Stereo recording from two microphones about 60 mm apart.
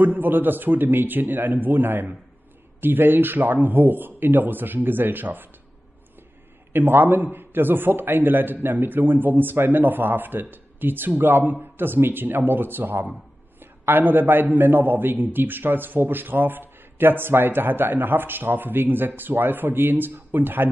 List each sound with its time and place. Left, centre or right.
0.0 s a man's voice: right
6.7 s a man's voice: right